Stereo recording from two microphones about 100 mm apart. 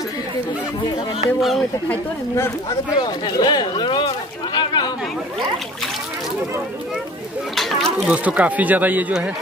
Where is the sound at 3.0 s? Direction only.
50° left (ahead or behind).